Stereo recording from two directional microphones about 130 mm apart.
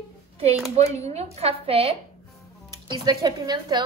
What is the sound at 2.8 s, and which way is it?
Speech, 30° right (ahead or behind).